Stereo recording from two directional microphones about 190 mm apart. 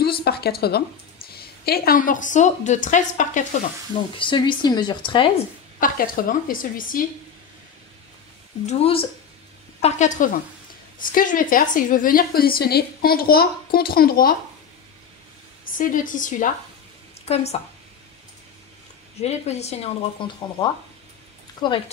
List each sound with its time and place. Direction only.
0.0 s a sound: 55° left (ahead or behind)
1.3 s a woman's voice: 55° left (ahead or behind)
4.2 s speech: 25° left (ahead or behind)
5.8 s a woman's voice: 50° left (ahead or behind)
8.6 s a woman's voice: 30° left (ahead or behind); by 14.3 s 50° left (ahead or behind)
15.6 s a woman's voice: 45° left (ahead or behind)
19.1 s a woman's voice: 35° left (ahead or behind)